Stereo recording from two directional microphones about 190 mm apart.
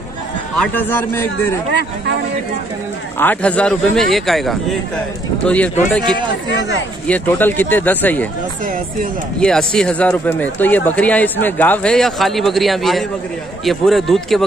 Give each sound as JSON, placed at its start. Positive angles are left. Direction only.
{"t": 0.6, "sound": "speech", "side_deg": 10}
{"t": 1.7, "sound": "speech", "side_deg": -60}
{"t": 3.2, "sound": "speech", "side_deg": 10}
{"t": 9.4, "sound": "speech", "side_deg": 5}